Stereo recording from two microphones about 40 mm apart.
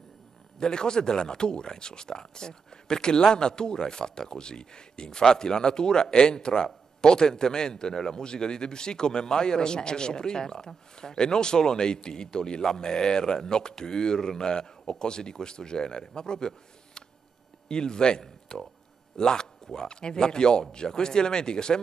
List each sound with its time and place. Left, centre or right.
0.6 s a man's voice: centre
16.2 s a sound: centre
17.6 s speech: centre